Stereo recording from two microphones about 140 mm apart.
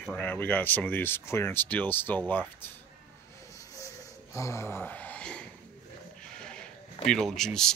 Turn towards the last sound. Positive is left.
turn(degrees=5)  # may be behind; listen again after turning